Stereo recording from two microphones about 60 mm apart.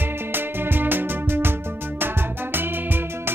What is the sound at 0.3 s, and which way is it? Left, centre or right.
Music, right.